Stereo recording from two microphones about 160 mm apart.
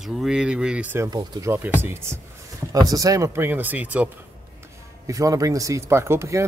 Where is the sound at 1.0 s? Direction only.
25° right (ahead or behind).